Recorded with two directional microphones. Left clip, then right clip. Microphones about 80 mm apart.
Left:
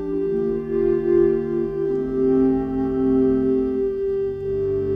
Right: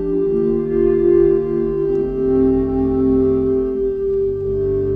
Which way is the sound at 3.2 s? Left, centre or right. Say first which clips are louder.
Right 3 dB; centre.